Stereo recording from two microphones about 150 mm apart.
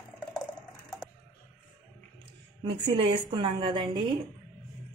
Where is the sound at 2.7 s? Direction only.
35° right (ahead or behind).